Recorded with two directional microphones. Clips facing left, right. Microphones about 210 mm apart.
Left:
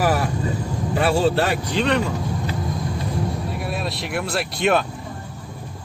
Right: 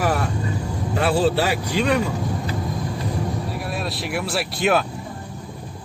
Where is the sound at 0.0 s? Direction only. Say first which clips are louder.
Left 2 dB; 5° left (ahead or behind).